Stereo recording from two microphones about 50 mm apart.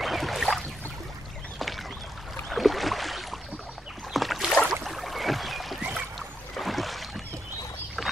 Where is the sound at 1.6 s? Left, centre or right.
Centre.